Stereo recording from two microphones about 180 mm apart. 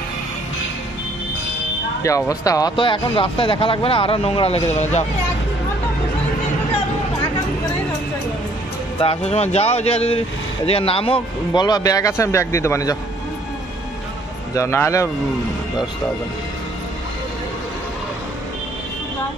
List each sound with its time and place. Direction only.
2.0 s speech: 20° left (ahead or behind); by 5.0 s 35° left (ahead or behind)
9.0 s speech: 35° left (ahead or behind); by 12.9 s 15° left (ahead or behind)
14.5 s speech: 15° left (ahead or behind)